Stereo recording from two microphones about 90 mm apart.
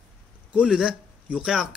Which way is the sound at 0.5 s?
10° right (ahead or behind).